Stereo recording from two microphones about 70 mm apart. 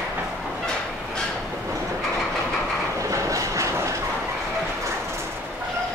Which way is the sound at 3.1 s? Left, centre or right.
Right.